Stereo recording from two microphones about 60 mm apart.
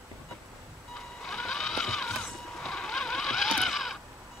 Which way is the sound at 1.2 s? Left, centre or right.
Centre.